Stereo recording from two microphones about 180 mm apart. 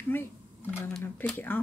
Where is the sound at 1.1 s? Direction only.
10° left (ahead or behind).